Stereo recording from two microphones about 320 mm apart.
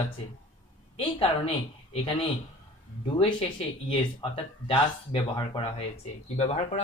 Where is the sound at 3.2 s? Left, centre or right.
Centre.